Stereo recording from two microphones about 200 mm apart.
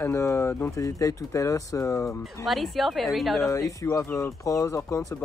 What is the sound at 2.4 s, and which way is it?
Speech, centre (ahead or behind).